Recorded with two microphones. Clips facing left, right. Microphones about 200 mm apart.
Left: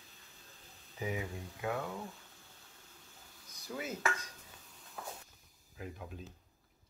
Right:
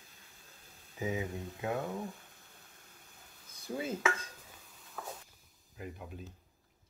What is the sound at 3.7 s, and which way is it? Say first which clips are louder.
Speech: right 4 dB; 30° right (ahead or behind).